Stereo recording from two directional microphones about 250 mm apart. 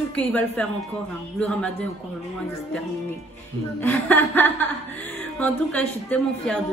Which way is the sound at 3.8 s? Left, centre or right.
Centre.